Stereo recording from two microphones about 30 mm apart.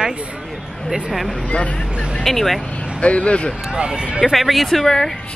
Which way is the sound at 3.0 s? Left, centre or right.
Left.